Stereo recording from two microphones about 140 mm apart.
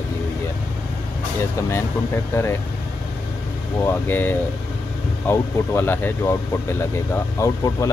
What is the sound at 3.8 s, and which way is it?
Speech, 15° left (ahead or behind).